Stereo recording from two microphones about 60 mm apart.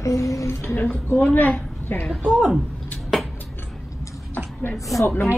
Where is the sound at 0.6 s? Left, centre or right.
Left.